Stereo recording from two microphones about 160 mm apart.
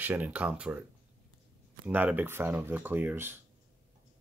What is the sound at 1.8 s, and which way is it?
Speech, 10° right (ahead or behind).